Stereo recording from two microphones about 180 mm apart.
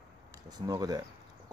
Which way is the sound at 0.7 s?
20° right (ahead or behind).